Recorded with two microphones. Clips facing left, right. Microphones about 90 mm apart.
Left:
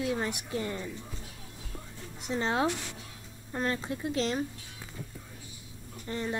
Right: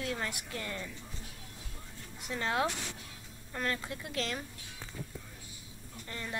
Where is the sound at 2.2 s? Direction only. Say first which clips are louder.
Left 3 dB; 25° left (ahead or behind).